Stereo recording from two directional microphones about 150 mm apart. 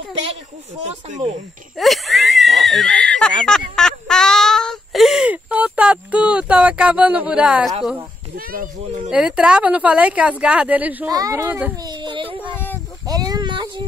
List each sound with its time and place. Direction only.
1.0 s speech: 50° right (ahead or behind)
1.8 s speech: centre (ahead or behind)
8.4 s speech: 70° right (ahead or behind)
9.1 s speech: 5° right (ahead or behind)
11.1 s speech: 25° right (ahead or behind)
11.7 s whimper: 25° right (ahead or behind)
12.5 s a sound: 10° left (ahead or behind)
13.0 s a sound: 25° right (ahead or behind)